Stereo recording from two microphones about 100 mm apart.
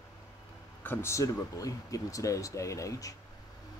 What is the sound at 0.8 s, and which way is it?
Speech, 30° left (ahead or behind).